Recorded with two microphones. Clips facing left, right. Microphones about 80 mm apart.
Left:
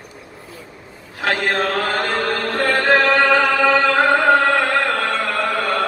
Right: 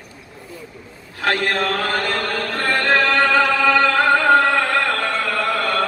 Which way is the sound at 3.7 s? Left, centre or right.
Centre.